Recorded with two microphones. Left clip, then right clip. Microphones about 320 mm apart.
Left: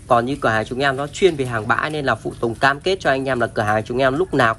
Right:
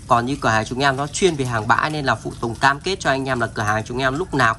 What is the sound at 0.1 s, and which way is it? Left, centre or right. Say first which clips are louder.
Speech: left 1 dB; centre.